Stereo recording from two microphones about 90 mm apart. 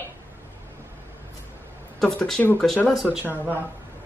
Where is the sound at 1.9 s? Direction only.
5° left (ahead or behind).